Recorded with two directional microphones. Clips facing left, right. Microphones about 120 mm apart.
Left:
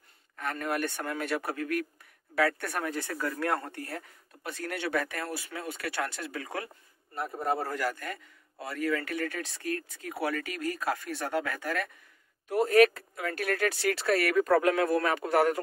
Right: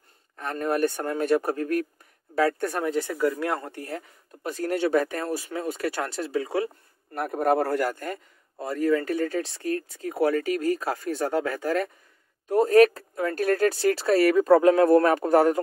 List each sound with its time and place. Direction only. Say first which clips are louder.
0.4 s a man's voice: right 7 dB; 35° right (ahead or behind)
2.7 s speech: right 6 dB; 20° right (ahead or behind)
4.4 s a man's voice: right 10 dB; 35° right (ahead or behind)
7.2 s a man's voice: right 8 dB; 70° right (ahead or behind); by 15.6 s 35° right (ahead or behind)